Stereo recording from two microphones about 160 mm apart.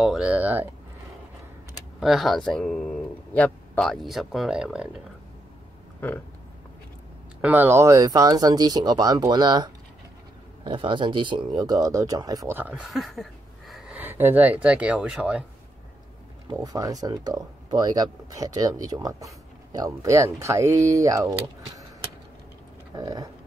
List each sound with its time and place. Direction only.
0.0 s speech: 5° right (ahead or behind)
2.0 s speech: centre (ahead or behind)
7.4 s speech: 15° right (ahead or behind)
16.4 s speech: 20° right (ahead or behind)
22.9 s speech: 25° right (ahead or behind)